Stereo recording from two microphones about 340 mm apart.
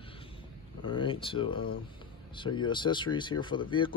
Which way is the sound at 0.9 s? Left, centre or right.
Centre.